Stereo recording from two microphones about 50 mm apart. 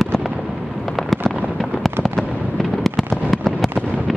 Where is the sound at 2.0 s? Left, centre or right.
Centre.